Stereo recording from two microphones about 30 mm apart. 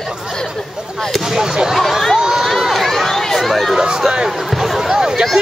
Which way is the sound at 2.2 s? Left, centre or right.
Centre.